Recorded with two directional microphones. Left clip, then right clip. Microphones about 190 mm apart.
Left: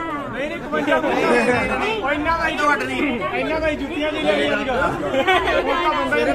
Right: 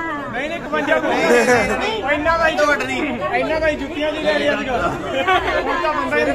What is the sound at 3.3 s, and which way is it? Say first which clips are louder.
Speech: right 3 dB; 20° right (ahead or behind).